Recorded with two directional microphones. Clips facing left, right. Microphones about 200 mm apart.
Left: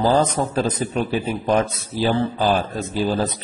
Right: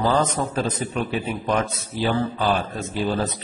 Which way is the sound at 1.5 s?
30° left (ahead or behind).